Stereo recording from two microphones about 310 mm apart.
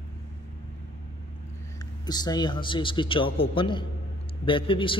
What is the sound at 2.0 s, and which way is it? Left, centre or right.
A man's voice, centre.